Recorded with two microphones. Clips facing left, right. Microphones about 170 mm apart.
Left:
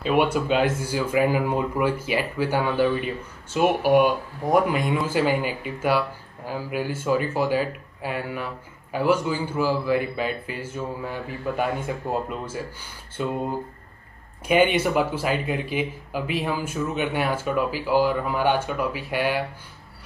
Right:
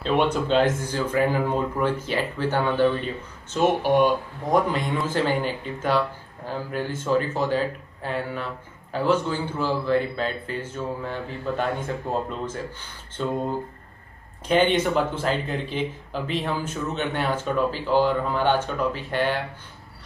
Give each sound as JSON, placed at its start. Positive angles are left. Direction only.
{"t": 0.0, "sound": "speech", "side_deg": 10}
{"t": 14.5, "sound": "speech", "side_deg": 10}